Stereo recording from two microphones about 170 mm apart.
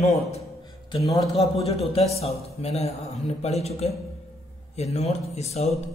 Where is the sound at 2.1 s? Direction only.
35° left (ahead or behind).